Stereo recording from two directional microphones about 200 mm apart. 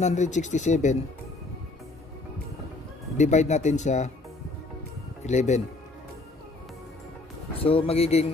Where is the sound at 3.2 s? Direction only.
35° left (ahead or behind).